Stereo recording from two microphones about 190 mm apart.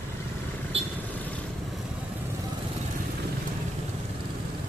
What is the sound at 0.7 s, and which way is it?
Vehicle, 30° right (ahead or behind).